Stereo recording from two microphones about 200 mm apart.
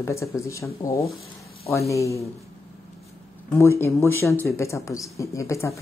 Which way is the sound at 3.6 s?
10° left (ahead or behind).